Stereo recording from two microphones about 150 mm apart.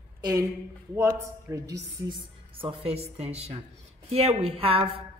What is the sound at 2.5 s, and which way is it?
A woman's voice, 40° right (ahead or behind).